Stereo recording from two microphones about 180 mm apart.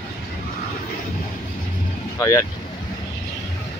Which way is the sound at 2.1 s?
20° left (ahead or behind).